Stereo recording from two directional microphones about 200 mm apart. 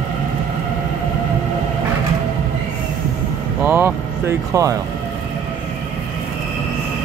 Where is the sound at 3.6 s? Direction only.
10° right (ahead or behind).